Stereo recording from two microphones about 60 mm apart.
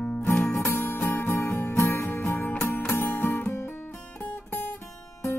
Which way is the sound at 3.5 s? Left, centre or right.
Left.